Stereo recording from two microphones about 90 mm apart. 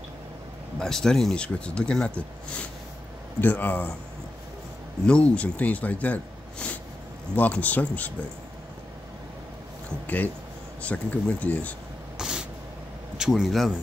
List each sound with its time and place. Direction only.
0.7 s speech: 5° left (ahead or behind)
5.0 s speech: 15° left (ahead or behind)
9.8 s speech: 20° left (ahead or behind)
12.2 s vehicle: 10° right (ahead or behind)
13.2 s speech: centre (ahead or behind)